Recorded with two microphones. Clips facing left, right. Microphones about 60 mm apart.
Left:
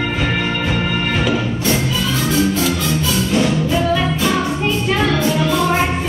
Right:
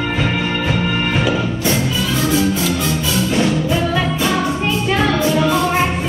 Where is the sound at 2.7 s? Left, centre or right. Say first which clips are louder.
Even; centre.